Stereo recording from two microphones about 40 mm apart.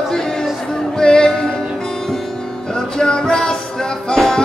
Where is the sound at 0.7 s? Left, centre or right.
Centre.